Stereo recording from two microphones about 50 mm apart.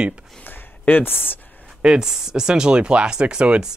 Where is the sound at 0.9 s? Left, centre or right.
Left.